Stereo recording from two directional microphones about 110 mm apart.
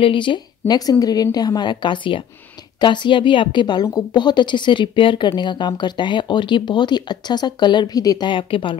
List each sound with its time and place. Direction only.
0.0 s a woman's voice: 50° left (ahead or behind)
8.3 s a woman's voice: 50° left (ahead or behind)